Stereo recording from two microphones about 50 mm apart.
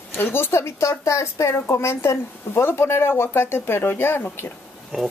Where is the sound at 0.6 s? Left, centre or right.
Left.